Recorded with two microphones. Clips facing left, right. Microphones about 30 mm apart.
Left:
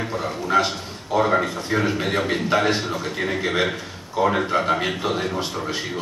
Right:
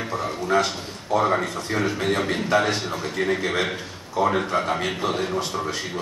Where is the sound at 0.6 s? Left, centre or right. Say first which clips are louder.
Left 2 dB; centre.